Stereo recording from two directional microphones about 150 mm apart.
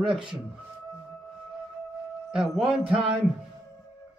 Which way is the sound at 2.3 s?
Centre (ahead or behind).